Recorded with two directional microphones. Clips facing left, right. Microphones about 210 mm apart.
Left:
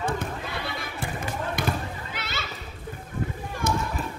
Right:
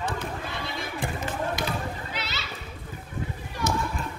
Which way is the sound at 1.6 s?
55° left (ahead or behind).